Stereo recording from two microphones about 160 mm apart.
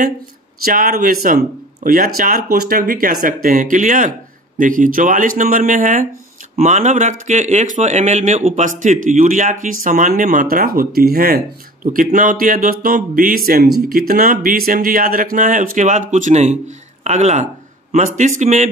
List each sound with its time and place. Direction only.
0.7 s speech: 65° right (ahead or behind); by 18.7 s 45° right (ahead or behind)